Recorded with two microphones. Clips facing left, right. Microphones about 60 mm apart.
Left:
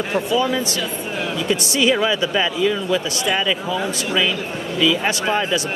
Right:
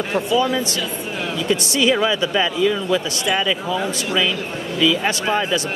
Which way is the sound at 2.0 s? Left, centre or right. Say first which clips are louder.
Even; centre.